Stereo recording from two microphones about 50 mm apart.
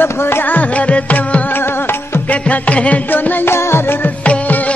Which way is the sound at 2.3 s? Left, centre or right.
Left.